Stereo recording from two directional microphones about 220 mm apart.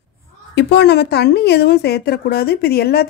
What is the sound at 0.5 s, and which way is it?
Speech, 50° left (ahead or behind).